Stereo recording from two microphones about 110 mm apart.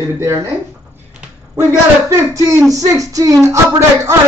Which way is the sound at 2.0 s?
30° right (ahead or behind).